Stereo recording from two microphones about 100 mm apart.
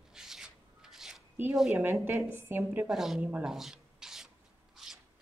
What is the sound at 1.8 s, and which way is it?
Speech, 20° right (ahead or behind).